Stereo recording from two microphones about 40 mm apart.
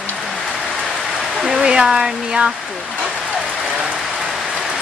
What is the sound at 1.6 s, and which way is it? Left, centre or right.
Speech, centre.